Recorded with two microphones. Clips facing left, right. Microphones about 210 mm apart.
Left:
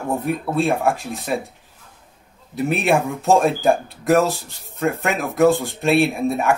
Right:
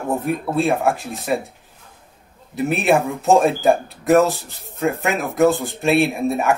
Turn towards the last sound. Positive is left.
turn(degrees=0)  # may be behind; listen again after turning